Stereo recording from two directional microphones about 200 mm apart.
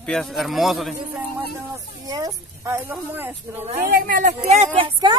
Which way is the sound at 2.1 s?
20° right (ahead or behind).